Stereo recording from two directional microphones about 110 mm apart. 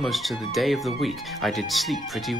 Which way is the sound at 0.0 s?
Centre (ahead or behind).